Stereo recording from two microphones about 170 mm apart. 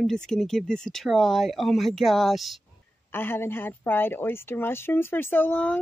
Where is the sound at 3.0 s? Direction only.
10° left (ahead or behind).